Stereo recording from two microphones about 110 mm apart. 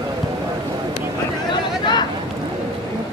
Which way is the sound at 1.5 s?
45° left (ahead or behind).